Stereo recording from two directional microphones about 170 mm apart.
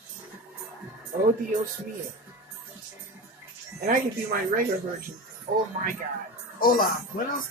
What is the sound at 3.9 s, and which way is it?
Speech, 55° right (ahead or behind).